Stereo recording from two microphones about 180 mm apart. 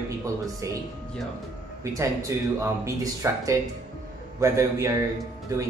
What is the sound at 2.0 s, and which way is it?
Speech, 15° right (ahead or behind).